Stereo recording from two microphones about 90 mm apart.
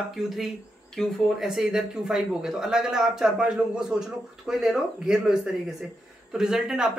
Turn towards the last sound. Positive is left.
turn(degrees=-5)  # may be behind; listen again after turning